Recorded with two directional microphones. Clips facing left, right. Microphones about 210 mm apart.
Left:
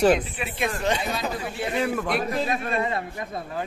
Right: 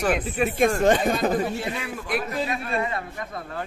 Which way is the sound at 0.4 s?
45° right (ahead or behind).